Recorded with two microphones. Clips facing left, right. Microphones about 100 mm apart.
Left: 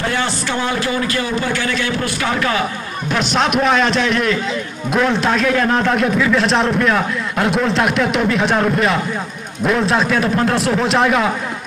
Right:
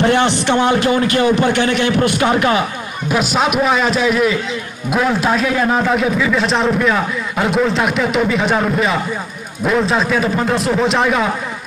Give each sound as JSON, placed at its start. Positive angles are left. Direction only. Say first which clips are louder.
{"t": 0.0, "sound": "speech", "louder": "right 6 dB", "side_deg": -20}
{"t": 3.1, "sound": "a man's voice", "louder": "right 1 dB", "side_deg": -5}